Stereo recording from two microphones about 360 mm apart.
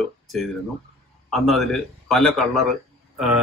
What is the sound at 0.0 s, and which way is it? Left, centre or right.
A man's voice, centre.